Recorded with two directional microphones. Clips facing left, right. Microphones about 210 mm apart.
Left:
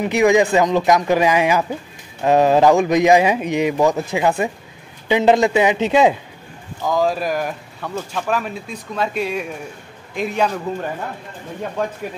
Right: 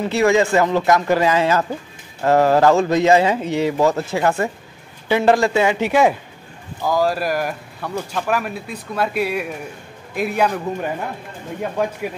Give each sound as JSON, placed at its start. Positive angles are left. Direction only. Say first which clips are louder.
{"t": 0.0, "sound": "speech", "louder": "left 2 dB", "side_deg": 15}
{"t": 6.8, "sound": "speech", "louder": "even", "side_deg": -5}